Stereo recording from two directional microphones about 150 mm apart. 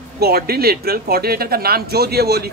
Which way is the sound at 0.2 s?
90° right.